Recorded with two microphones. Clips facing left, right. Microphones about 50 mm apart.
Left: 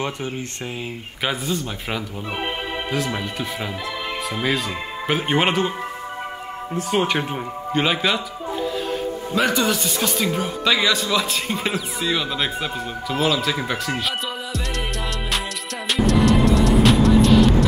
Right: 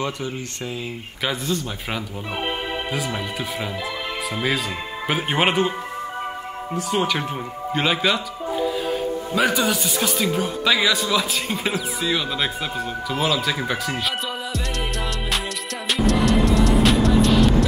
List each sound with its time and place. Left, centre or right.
1.2 s speech: centre
3.2 s speech: centre
6.9 s speech: left
7.7 s speech: centre
9.3 s speech: centre
13.1 s music: centre